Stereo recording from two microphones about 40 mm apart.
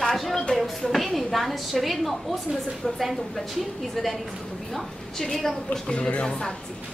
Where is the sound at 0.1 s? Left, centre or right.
Centre.